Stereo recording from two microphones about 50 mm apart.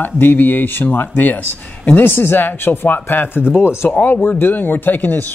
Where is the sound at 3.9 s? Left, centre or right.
Left.